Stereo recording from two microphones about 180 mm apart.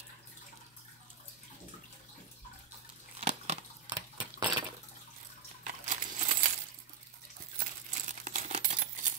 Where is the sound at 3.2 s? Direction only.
35° right (ahead or behind).